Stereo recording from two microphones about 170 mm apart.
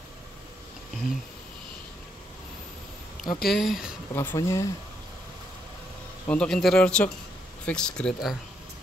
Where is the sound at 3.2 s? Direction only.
55° left (ahead or behind).